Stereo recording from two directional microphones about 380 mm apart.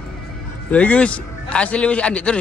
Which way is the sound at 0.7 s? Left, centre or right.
Centre.